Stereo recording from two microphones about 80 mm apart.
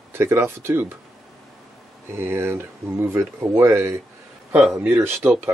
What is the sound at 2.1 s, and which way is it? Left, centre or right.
Speech, right.